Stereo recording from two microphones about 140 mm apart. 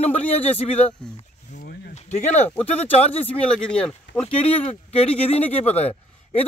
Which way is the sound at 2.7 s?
50° left (ahead or behind).